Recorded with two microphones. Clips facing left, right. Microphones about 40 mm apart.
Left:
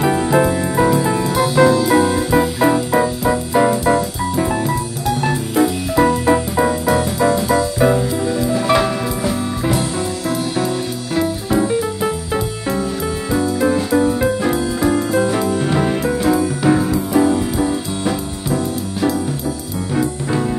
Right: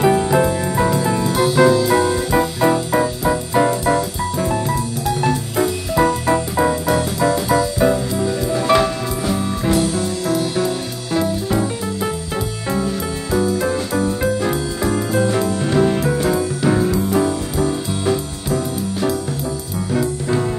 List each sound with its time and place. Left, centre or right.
0.0 s music: centre